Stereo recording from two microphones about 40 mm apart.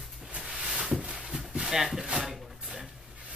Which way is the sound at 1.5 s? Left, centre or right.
Centre.